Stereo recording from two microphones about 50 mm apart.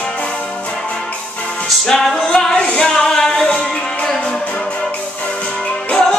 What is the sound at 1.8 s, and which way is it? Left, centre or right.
Music, centre.